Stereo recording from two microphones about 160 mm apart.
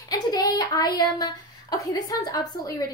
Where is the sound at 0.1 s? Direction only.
25° left (ahead or behind).